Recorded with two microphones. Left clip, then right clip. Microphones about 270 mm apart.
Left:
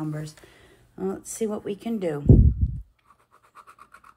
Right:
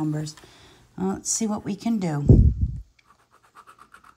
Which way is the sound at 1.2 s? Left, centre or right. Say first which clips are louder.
Right 1 dB; centre.